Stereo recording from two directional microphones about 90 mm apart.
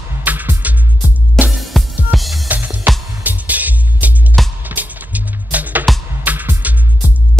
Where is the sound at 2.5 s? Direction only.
20° right (ahead or behind).